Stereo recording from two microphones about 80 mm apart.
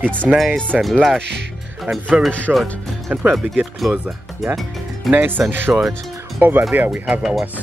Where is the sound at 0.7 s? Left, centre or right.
Centre.